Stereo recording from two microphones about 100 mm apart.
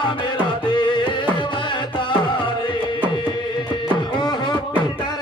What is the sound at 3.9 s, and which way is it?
Music, 50° left (ahead or behind).